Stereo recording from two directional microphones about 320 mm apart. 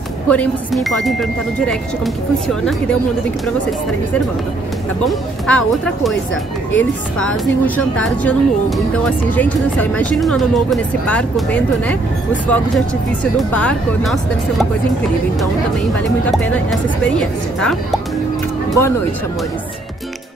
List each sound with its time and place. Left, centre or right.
0.3 s a woman's voice: centre
5.0 s a woman's voice: centre
16.3 s a woman's voice: centre